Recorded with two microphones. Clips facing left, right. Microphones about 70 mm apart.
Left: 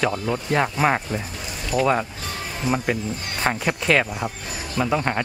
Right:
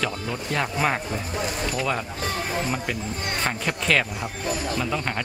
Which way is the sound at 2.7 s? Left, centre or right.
Left.